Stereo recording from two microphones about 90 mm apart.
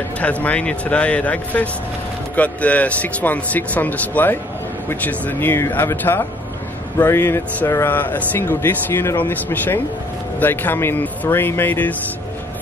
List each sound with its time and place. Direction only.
0.2 s speech: 15° left (ahead or behind)